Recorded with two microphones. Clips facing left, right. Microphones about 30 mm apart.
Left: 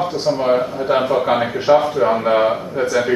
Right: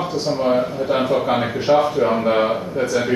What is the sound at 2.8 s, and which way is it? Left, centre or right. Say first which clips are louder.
Speech: left 3 dB; centre.